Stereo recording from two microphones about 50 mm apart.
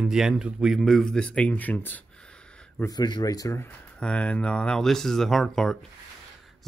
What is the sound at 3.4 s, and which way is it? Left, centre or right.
Speech, left.